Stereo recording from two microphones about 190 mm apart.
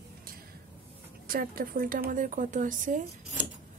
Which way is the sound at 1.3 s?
50° right (ahead or behind).